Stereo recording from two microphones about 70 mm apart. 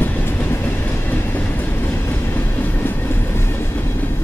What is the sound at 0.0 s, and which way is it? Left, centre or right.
Train, left.